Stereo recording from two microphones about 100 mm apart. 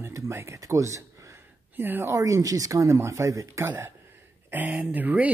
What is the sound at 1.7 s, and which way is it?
Speech, 20° right (ahead or behind).